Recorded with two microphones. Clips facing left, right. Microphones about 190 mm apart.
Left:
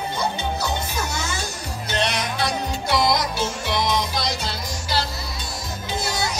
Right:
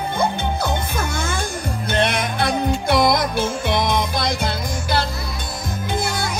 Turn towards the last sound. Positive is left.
turn(degrees=-55)  # may be behind; listen again after turning